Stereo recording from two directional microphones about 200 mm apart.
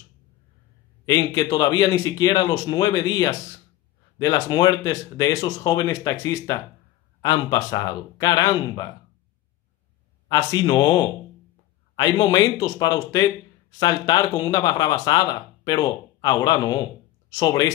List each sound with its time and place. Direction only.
1.0 s speech: 20° left (ahead or behind)
10.2 s speech: 20° left (ahead or behind)